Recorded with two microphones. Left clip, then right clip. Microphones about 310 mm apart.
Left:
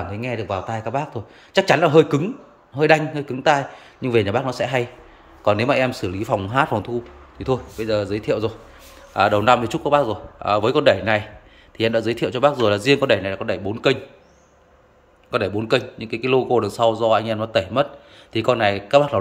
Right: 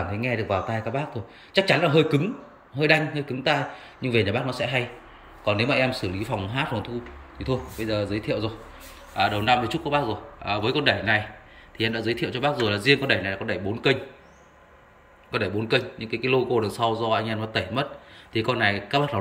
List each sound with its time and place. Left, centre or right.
0.1 s speech: centre
15.3 s speech: centre